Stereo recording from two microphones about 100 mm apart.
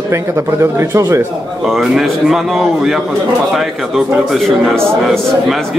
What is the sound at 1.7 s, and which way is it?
Speech, centre (ahead or behind).